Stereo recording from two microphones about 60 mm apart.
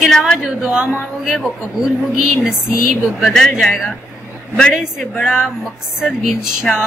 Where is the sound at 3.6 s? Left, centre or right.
Centre.